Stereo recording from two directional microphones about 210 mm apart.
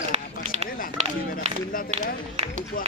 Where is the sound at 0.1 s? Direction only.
30° right (ahead or behind).